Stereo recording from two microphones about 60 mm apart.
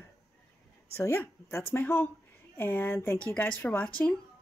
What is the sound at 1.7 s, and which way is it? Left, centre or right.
Speech, left.